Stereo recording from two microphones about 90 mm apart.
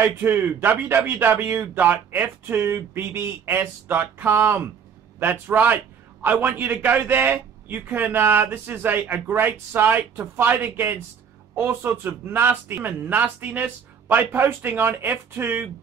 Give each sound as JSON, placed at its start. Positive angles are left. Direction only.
{"t": 0.0, "sound": "speech", "side_deg": -20}